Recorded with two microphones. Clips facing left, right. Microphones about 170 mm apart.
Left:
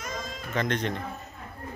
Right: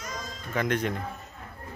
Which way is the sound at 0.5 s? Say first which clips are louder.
Right 1 dB; 10° right (ahead or behind).